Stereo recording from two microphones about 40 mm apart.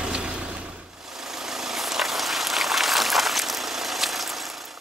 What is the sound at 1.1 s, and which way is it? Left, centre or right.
Vehicle, centre.